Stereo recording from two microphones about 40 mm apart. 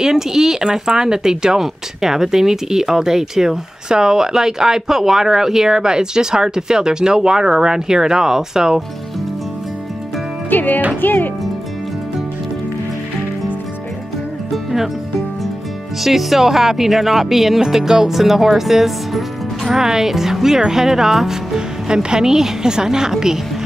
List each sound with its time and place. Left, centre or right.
0.0 s speech: centre
10.5 s speech: left
14.5 s music: centre
16.0 s speech: centre